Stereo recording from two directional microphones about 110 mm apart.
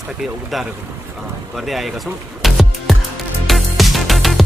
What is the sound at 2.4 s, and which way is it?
Music, centre (ahead or behind).